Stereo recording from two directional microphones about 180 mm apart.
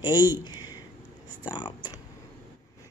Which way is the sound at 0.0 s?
25° left (ahead or behind).